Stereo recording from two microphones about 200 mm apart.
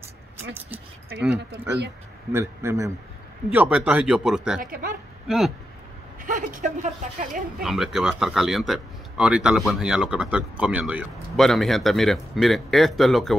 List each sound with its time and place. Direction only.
1.3 s speech: 60° right (ahead or behind)
2.3 s a man's voice: 15° right (ahead or behind)
4.6 s speech: 45° right (ahead or behind)
5.3 s speech: 5° right (ahead or behind)
6.2 s a woman's voice: 40° right (ahead or behind)
7.6 s speech: centre (ahead or behind)